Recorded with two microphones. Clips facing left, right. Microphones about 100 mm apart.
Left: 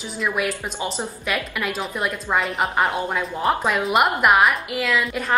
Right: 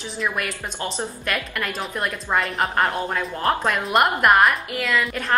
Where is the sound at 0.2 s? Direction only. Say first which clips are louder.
Left 3 dB; centre (ahead or behind).